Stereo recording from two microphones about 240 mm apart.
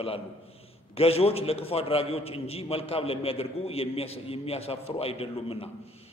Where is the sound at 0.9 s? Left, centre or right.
Left.